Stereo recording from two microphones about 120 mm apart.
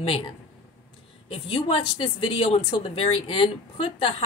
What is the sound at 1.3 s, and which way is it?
A woman's voice, 50° left (ahead or behind).